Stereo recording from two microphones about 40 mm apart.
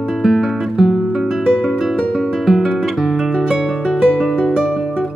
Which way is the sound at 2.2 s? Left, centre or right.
Centre.